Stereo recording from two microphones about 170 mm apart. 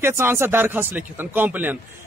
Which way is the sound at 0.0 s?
15° right (ahead or behind).